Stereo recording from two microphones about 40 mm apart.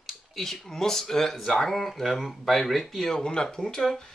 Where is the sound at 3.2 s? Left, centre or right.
Centre.